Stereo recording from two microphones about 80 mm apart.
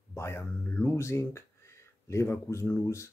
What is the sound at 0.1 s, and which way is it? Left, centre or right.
Speech, left.